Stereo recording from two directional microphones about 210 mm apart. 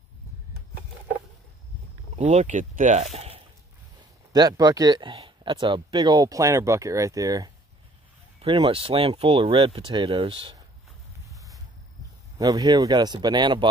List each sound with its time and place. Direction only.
2.1 s speech: 35° right (ahead or behind)
4.3 s speech: 20° right (ahead or behind)
11.3 s a sound: 15° right (ahead or behind)
12.4 s speech: 20° right (ahead or behind)